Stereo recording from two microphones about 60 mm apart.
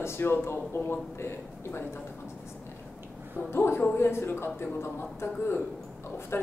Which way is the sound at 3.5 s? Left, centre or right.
Left.